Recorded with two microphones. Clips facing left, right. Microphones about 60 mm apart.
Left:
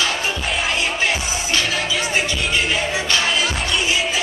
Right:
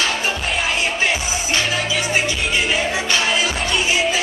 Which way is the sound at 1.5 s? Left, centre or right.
Right.